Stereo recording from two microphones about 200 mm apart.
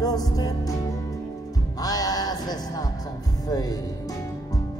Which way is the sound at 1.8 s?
20° left (ahead or behind).